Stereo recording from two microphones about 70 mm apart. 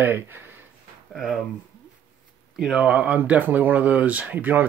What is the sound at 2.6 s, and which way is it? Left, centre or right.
Speech, centre.